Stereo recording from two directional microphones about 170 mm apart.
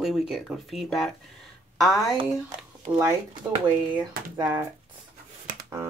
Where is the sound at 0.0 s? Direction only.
Centre (ahead or behind).